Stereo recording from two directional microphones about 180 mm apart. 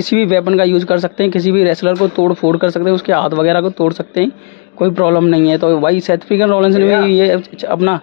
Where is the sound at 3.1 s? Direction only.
20° left (ahead or behind).